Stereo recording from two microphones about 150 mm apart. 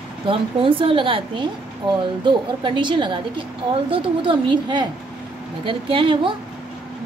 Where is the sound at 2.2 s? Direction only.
30° right (ahead or behind).